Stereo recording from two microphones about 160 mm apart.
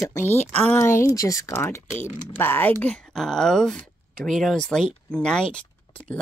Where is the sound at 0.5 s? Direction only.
15° left (ahead or behind).